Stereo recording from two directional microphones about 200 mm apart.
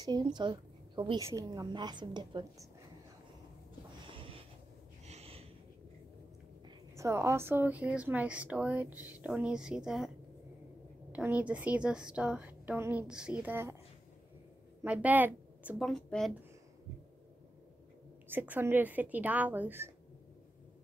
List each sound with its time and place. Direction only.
0.0 s a woman's voice: 20° right (ahead or behind)
4.1 s a sound: 25° right (ahead or behind)
7.0 s a woman's voice: 15° right (ahead or behind)
14.8 s a woman's voice: 10° right (ahead or behind)
18.3 s a woman's voice: 10° right (ahead or behind)